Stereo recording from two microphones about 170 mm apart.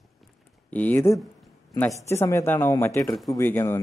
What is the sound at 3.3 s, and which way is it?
Speech, 15° left (ahead or behind).